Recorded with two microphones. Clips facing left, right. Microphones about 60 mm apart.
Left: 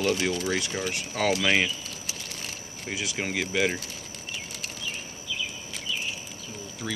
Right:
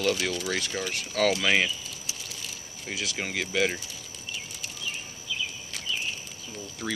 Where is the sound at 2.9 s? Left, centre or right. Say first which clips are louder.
Left 1 dB; centre.